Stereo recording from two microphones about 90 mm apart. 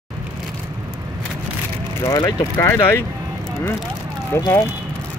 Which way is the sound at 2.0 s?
45° left (ahead or behind).